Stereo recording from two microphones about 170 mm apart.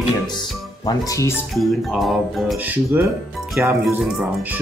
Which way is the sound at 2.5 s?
10° right (ahead or behind).